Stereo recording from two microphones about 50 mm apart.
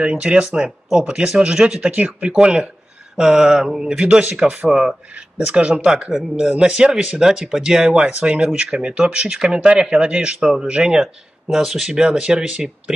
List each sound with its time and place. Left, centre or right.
0.0 s speech: centre
1.9 s speech: right
2.3 s speech: centre; by 4.6 s right
4.6 s speech: centre